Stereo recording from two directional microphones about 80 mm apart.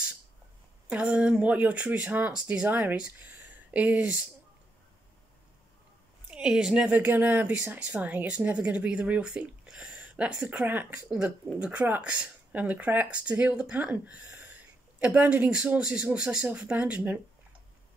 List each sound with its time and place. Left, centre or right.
0.8 s speech: centre
6.3 s speech: centre